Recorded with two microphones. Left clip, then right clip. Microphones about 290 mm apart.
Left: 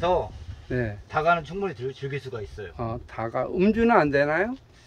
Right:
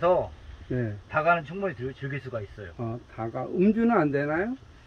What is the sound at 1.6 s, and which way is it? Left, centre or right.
Speech, left.